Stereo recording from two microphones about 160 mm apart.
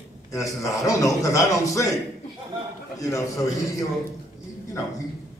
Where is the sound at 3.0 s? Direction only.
20° left (ahead or behind).